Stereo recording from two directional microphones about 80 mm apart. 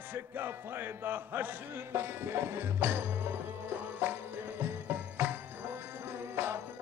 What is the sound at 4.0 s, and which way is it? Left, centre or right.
Music, right.